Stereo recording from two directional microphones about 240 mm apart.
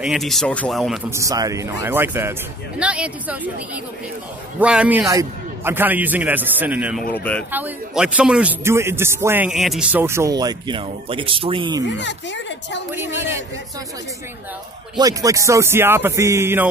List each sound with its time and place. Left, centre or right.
0.0 s speech: centre
1.1 s a man's voice: centre
4.6 s a man's voice: centre; by 11.8 s right
11.9 s a woman's voice: left
12.9 s a man's voice: centre
15.0 s a man's voice: centre